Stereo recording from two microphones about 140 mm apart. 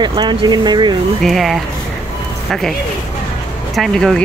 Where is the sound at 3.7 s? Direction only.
Centre (ahead or behind).